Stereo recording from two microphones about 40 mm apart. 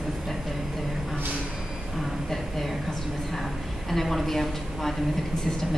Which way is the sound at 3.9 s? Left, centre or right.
Centre.